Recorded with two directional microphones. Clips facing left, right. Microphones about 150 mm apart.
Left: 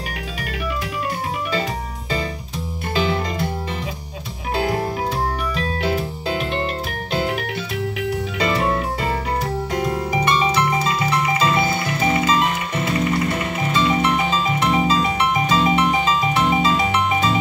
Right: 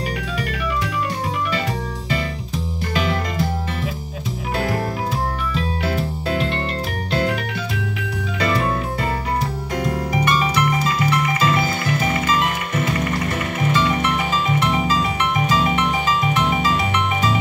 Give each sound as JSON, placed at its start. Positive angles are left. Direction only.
{"t": 2.9, "sound": "music", "side_deg": 30}
{"t": 6.3, "sound": "music", "side_deg": 10}
{"t": 8.4, "sound": "music", "side_deg": 25}
{"t": 9.8, "sound": "music", "side_deg": 25}
{"t": 14.9, "sound": "music", "side_deg": 25}